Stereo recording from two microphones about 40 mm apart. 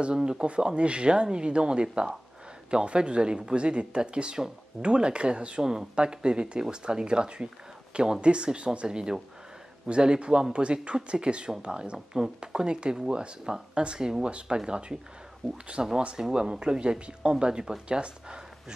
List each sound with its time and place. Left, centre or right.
0.0 s speech: right
15.4 s speech: centre
16.2 s speech: centre